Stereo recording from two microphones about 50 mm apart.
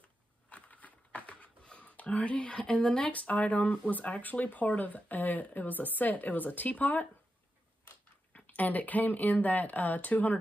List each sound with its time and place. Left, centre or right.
0.5 s a sound: left
3.1 s speech: left
8.5 s speech: left